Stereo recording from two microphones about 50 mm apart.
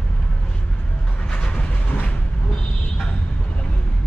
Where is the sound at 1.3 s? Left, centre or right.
Left.